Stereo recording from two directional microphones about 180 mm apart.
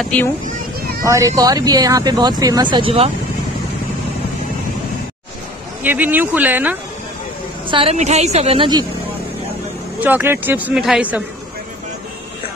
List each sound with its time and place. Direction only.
0.5 s a sound: 55° right (ahead or behind)
1.0 s speech: 15° right (ahead or behind)
5.9 s speech: 10° right (ahead or behind)
7.7 s a woman's voice: 35° right (ahead or behind)
9.9 s speech: 10° right (ahead or behind)